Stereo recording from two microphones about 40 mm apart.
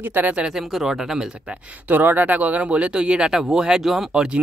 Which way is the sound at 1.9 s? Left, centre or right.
Right.